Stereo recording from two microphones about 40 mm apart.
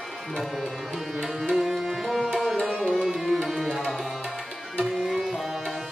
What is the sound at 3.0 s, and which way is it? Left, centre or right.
Tabla, centre.